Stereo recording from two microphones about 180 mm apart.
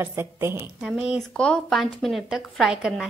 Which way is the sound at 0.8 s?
Centre (ahead or behind).